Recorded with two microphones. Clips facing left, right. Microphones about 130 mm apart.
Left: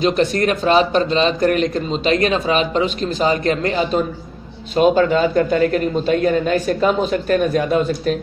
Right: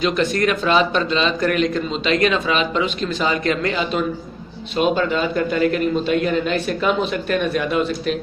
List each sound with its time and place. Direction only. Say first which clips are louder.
0.0 s a man's voice: left 2 dB; 40° left (ahead or behind)